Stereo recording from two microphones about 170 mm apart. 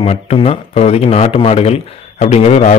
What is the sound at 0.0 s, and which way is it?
Speech, 40° left (ahead or behind).